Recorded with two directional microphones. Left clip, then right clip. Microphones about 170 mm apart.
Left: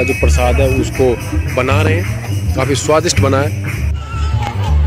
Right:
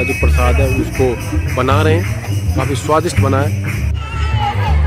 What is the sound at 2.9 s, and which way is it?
Speech, 20° left (ahead or behind).